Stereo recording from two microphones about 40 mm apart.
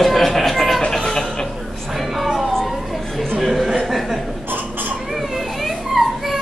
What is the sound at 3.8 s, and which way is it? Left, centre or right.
Chuckle, centre.